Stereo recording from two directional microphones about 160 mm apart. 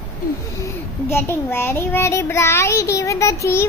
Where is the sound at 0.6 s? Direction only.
15° left (ahead or behind).